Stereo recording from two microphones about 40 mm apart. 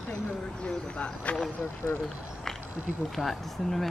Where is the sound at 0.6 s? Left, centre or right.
Left.